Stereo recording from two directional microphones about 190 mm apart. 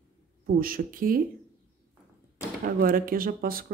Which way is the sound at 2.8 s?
50° right (ahead or behind).